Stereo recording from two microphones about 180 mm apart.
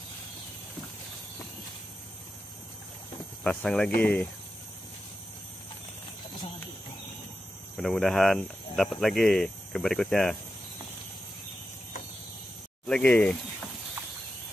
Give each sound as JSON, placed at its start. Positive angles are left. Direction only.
{"t": 3.4, "sound": "speech", "side_deg": 5}
{"t": 7.7, "sound": "speech", "side_deg": 0}
{"t": 12.8, "sound": "speech", "side_deg": 5}